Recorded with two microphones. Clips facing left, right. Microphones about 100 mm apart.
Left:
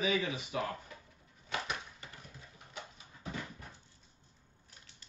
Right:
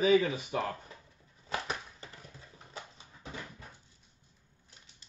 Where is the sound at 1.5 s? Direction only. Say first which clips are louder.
Right 2 dB; 35° right (ahead or behind).